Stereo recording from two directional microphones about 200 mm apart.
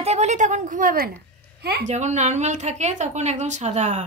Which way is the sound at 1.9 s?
35° right (ahead or behind).